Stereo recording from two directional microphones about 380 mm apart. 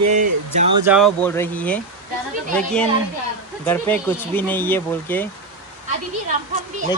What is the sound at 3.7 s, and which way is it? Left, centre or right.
Speech, centre.